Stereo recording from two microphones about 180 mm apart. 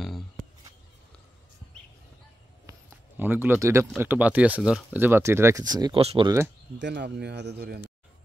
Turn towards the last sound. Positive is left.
turn(degrees=-65)  # may be behind; listen again after turning